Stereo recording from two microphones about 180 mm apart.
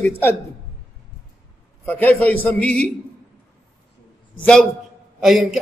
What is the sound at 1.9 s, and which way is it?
A man's voice, 10° left (ahead or behind).